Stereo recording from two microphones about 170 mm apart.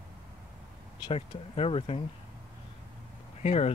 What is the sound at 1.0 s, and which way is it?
Speech, 35° left (ahead or behind).